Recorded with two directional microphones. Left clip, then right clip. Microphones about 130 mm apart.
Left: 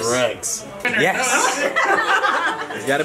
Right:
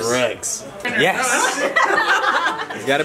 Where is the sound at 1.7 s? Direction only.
20° right (ahead or behind).